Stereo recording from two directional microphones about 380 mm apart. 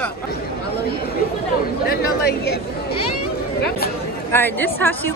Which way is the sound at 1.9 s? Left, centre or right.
Left.